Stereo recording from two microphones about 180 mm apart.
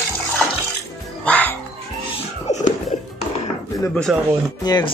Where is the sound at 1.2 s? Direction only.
10° left (ahead or behind).